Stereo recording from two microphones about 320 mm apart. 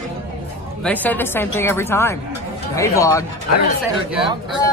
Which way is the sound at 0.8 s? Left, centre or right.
Centre.